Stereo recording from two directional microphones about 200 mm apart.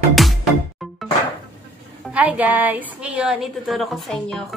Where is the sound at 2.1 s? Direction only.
5° right (ahead or behind).